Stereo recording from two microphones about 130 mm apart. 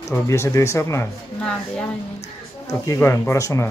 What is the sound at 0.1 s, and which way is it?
Speech, 20° left (ahead or behind).